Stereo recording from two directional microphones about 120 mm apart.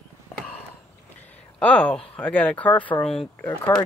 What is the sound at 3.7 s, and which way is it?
Speech, 20° left (ahead or behind).